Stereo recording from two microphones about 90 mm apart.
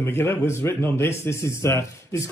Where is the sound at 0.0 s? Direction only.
25° left (ahead or behind).